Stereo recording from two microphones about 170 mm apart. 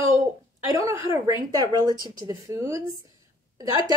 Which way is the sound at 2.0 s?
20° right (ahead or behind).